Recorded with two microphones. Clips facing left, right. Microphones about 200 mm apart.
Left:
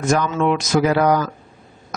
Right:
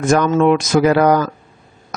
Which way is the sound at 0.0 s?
55° right (ahead or behind).